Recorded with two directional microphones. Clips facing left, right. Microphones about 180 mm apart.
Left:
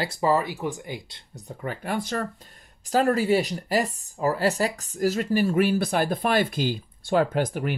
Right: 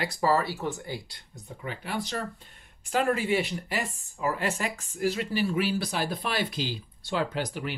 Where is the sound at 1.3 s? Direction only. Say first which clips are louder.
Left 5 dB; 40° left (ahead or behind).